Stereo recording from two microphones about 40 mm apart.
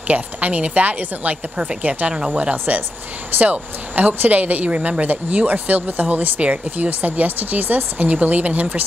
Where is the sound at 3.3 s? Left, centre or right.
Right.